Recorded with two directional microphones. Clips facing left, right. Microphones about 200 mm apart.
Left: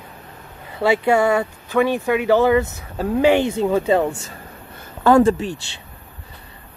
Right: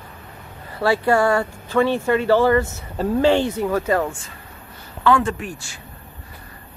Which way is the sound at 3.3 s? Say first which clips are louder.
Left 2 dB; 20° left (ahead or behind).